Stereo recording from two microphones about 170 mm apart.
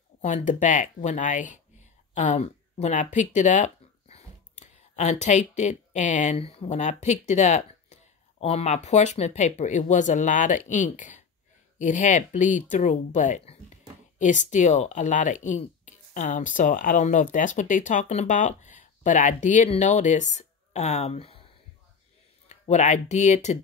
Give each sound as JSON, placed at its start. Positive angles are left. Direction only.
{"t": 0.2, "sound": "speech", "side_deg": 45}
{"t": 22.5, "sound": "speech", "side_deg": 45}